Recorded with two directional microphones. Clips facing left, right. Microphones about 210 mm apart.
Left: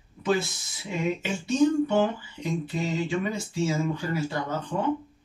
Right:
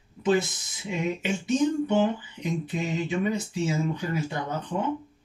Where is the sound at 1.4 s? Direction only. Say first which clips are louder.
Left 3 dB; 20° right (ahead or behind).